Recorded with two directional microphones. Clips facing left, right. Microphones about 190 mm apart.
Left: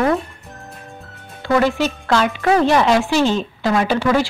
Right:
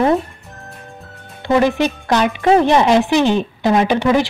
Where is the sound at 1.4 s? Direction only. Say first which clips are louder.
Right 2 dB; 20° right (ahead or behind).